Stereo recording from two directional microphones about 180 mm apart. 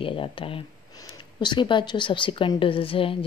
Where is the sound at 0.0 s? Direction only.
30° left (ahead or behind).